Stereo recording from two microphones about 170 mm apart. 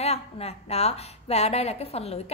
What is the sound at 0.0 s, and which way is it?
A woman's voice, 40° left (ahead or behind).